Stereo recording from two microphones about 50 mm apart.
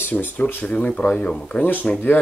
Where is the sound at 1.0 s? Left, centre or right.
Left.